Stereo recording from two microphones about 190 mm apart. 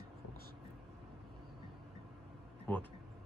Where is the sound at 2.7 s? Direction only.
5° left (ahead or behind).